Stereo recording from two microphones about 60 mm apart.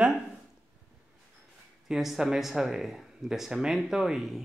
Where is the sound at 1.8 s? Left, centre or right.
Centre.